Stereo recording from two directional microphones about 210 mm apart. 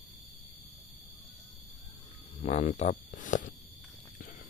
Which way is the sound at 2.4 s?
35° left (ahead or behind).